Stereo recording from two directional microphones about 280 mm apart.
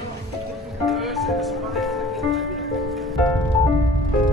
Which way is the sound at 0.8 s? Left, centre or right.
Centre.